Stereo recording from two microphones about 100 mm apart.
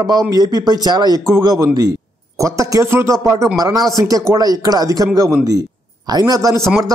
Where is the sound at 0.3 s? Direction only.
40° right (ahead or behind).